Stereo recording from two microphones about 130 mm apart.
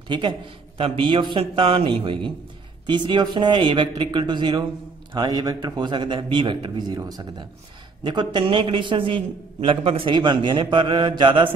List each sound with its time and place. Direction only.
0.1 s a man's voice: 35° right (ahead or behind)